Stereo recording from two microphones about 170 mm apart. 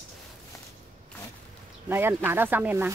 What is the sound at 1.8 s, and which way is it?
Speech, 15° right (ahead or behind).